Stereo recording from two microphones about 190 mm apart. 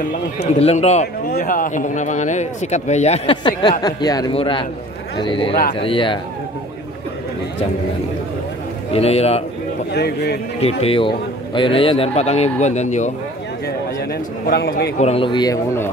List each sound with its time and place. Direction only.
0.6 s a man's voice: 35° left (ahead or behind)
1.3 s a man's voice: 45° left (ahead or behind)
3.8 s speech: 20° left (ahead or behind)
8.9 s a man's voice: 35° left (ahead or behind)
9.9 s speech: 60° left (ahead or behind)
10.6 s a man's voice: 30° left (ahead or behind)
13.7 s a man's voice: 55° left (ahead or behind)
15.0 s speech: 30° left (ahead or behind); by 15.9 s 15° left (ahead or behind)